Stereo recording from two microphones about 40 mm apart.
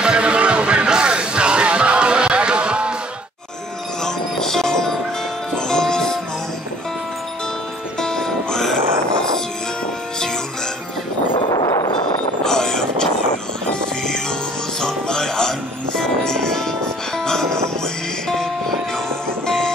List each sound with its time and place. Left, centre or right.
0.0 s music: right
4.0 s music: centre
8.0 s music: centre
12.4 s vehicle: centre
14.8 s music: centre